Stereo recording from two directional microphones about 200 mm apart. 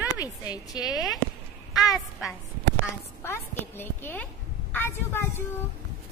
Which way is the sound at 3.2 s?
10° left (ahead or behind).